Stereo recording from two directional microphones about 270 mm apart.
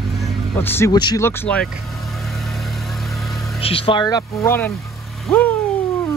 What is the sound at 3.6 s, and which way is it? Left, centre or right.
Speech, left.